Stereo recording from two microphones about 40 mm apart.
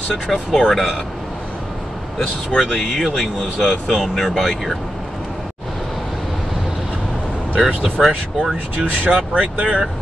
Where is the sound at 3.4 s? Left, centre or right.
Centre.